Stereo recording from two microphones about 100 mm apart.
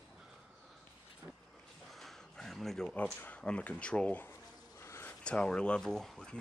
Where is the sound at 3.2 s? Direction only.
10° left (ahead or behind).